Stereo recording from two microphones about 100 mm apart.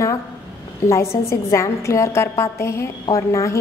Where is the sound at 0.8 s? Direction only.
30° left (ahead or behind).